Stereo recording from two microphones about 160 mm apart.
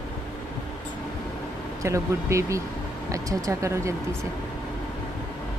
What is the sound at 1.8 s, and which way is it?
Speech, 20° right (ahead or behind).